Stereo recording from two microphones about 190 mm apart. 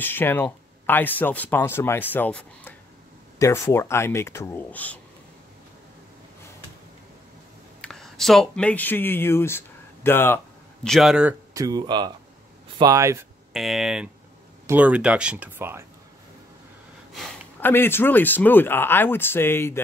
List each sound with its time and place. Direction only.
0.0 s speech: 10° left (ahead or behind)
7.8 s speech: centre (ahead or behind)
10.9 s speech: centre (ahead or behind)
11.5 s speech: 20° right (ahead or behind)
13.5 s speech: centre (ahead or behind)
17.1 s speech: 5° left (ahead or behind)